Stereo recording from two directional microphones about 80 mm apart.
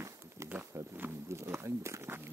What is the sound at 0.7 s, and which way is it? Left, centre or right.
Wild animals, right.